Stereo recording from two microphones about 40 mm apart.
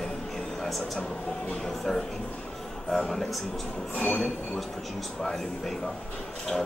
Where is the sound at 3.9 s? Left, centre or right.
Left.